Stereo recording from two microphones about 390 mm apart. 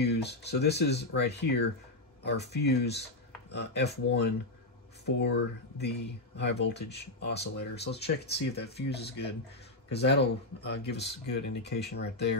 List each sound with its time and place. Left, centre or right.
0.0 s speech: left